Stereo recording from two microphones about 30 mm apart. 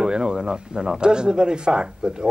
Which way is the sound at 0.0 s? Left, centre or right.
Right.